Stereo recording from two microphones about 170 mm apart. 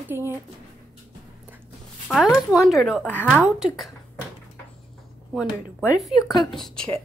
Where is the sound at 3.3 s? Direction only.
5° right (ahead or behind).